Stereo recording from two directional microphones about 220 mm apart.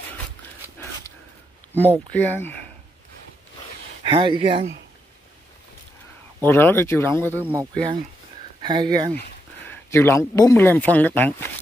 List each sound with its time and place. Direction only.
1.7 s speech: 10° left (ahead or behind)
4.0 s speech: 20° right (ahead or behind)
6.4 s speech: 10° left (ahead or behind)
7.3 s speech: 10° right (ahead or behind)
8.6 s speech: 20° right (ahead or behind)
9.7 s speech: 10° left (ahead or behind)